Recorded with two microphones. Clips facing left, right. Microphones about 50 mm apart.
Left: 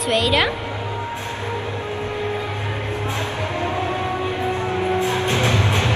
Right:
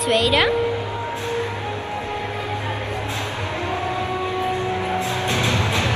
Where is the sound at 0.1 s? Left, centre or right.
Centre.